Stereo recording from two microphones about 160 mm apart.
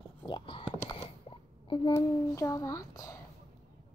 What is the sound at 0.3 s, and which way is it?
Speech, 30° left (ahead or behind).